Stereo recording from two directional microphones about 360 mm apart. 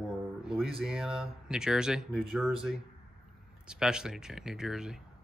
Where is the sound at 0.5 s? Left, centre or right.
Centre.